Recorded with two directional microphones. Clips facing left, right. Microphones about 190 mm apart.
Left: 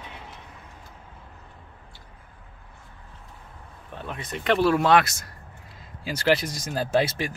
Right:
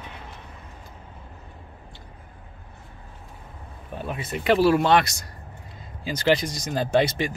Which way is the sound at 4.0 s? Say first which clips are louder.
Right 4 dB; 10° right (ahead or behind).